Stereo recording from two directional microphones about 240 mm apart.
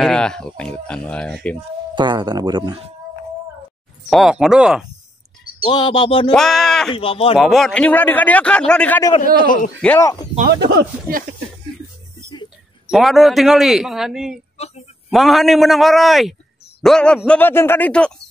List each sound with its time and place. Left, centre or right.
0.0 s a man's voice: centre
2.0 s speech: centre
4.1 s a man's voice: centre
5.7 s speech: centre
6.3 s speech: centre
6.9 s speech: left
7.3 s a man's voice: centre
9.1 s a man's voice: left
9.8 s speech: centre
10.6 s speech: right
12.9 s a man's voice: centre